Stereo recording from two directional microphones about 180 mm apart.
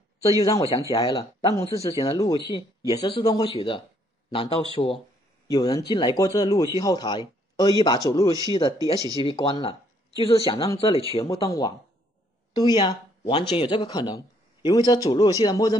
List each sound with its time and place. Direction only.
0.4 s a man's voice: 20° left (ahead or behind)
5.5 s speech: 20° left (ahead or behind)